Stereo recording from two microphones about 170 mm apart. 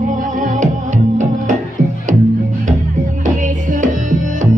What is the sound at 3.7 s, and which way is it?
Music, 50° right (ahead or behind).